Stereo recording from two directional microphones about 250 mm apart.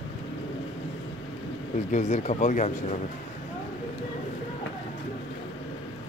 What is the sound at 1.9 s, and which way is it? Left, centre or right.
Speech, left.